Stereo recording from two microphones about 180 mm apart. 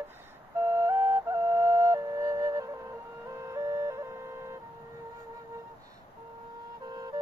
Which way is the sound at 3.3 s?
15° right (ahead or behind).